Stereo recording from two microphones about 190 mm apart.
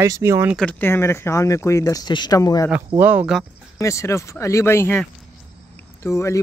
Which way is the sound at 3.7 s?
15° left (ahead or behind).